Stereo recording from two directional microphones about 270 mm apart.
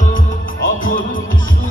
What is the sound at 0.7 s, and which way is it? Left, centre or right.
Music, left.